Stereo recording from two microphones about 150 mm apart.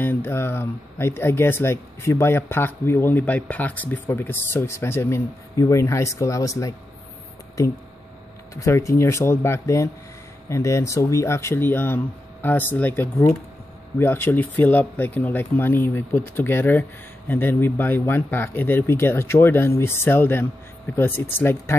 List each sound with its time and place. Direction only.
0.0 s speech: 15° left (ahead or behind)
8.5 s speech: 20° left (ahead or behind)